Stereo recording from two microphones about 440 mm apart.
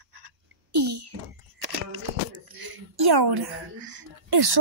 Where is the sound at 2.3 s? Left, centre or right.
Right.